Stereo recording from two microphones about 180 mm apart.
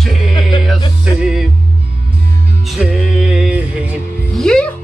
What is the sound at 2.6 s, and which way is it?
Music, 5° right (ahead or behind).